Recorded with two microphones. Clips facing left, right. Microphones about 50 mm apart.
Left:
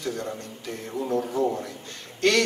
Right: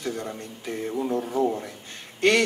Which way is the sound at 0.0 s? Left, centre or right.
Centre.